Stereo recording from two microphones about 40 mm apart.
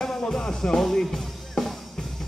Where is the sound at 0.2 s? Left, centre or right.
Centre.